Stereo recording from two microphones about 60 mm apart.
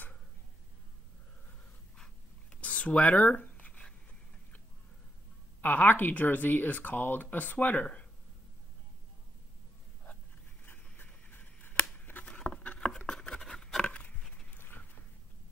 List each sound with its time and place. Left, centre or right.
2.5 s writing: left
5.6 s speech: left
10.6 s a sound: left
12.0 s scissors: left
12.3 s patter: centre
13.8 s a sound: left